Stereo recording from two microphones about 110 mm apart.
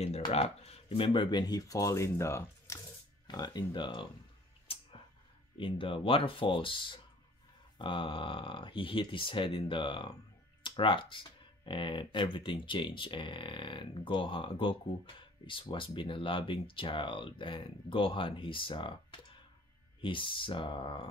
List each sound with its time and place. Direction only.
0.3 s speech: 70° left (ahead or behind); by 2.8 s 25° left (ahead or behind)
3.3 s speech: 40° left (ahead or behind)
5.6 s speech: 50° left (ahead or behind)
20.0 s speech: 50° left (ahead or behind)